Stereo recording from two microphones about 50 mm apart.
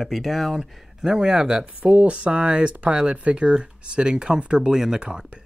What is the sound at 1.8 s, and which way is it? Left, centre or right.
Speech, right.